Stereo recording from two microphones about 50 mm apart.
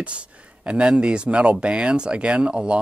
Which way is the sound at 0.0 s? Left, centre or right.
Right.